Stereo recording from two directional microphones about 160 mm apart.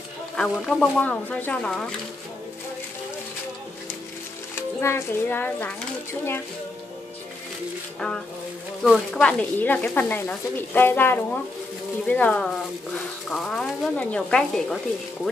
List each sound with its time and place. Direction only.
0.4 s speech: 5° left (ahead or behind)
4.7 s speech: 15° left (ahead or behind)
8.8 s speech: centre (ahead or behind)